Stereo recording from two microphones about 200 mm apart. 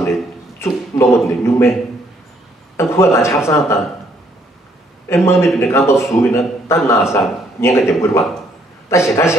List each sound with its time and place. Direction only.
0.6 s a man's voice: 15° left (ahead or behind)
2.8 s a man's voice: 15° left (ahead or behind)
5.1 s a man's voice: 15° left (ahead or behind)